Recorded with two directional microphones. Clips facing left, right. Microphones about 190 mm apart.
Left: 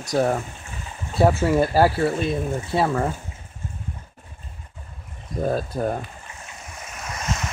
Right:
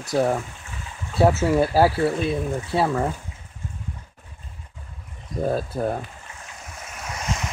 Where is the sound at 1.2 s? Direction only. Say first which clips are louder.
Even; 5° right (ahead or behind).